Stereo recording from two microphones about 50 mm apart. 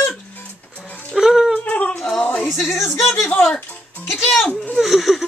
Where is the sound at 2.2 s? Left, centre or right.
Left.